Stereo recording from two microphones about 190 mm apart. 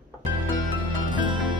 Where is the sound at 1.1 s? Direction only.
25° right (ahead or behind).